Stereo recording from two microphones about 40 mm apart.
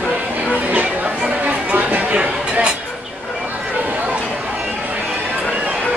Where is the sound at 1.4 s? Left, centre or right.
Right.